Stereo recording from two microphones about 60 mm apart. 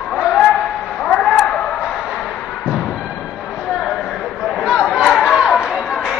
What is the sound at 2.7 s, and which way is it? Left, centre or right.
Music, centre.